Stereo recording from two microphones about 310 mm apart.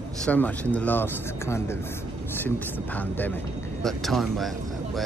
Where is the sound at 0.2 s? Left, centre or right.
Centre.